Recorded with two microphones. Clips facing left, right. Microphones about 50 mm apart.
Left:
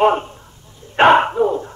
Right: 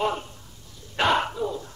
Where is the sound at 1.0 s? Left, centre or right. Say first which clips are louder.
Left 11 dB; left.